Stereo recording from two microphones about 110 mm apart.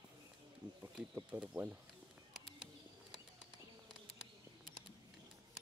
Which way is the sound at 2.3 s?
5° right (ahead or behind).